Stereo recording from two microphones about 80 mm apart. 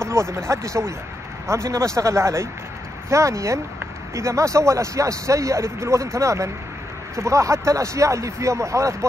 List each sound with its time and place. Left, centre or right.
0.0 s speech: right